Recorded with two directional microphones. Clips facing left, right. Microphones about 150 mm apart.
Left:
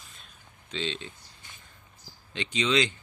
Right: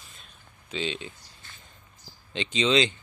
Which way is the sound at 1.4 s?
15° left (ahead or behind).